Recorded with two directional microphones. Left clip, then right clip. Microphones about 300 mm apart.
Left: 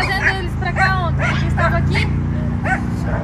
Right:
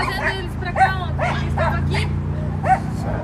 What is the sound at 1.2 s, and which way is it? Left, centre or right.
Speech, right.